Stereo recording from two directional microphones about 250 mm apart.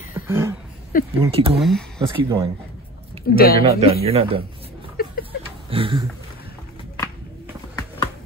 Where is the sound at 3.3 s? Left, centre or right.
Left.